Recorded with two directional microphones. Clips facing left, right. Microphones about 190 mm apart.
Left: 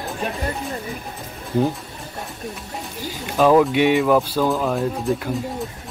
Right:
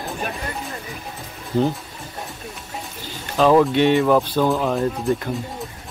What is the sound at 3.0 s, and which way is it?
Speech, 10° left (ahead or behind).